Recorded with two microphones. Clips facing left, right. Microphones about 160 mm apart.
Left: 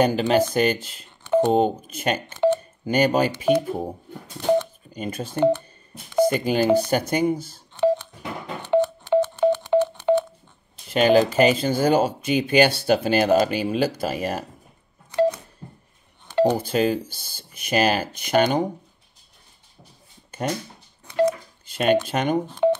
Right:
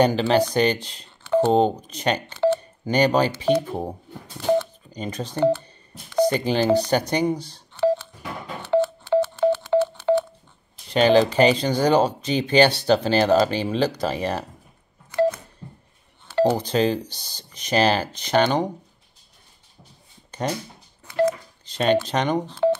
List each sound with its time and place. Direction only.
0.0 s speech: 10° left (ahead or behind)
1.2 s speech: 15° left (ahead or behind)
2.3 s telephone dialing: 15° left (ahead or behind)
2.8 s speech: 10° left (ahead or behind)
4.6 s speech: 10° left (ahead or behind)
7.7 s telephone dialing: 15° left (ahead or behind)
10.9 s speech: 5° left (ahead or behind)
15.1 s telephone dialing: 15° left (ahead or behind)
16.3 s speech: 15° left (ahead or behind)
21.6 s speech: 10° left (ahead or behind)